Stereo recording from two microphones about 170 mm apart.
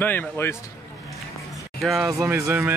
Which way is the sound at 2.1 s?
15° right (ahead or behind).